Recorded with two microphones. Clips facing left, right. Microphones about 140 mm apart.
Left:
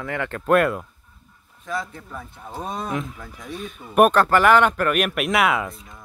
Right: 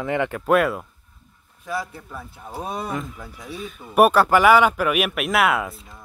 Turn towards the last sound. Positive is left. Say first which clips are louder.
# even
turn(degrees=0)  # may be behind; listen again after turning